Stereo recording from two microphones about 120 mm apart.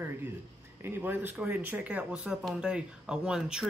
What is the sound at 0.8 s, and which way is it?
Speech, 15° right (ahead or behind).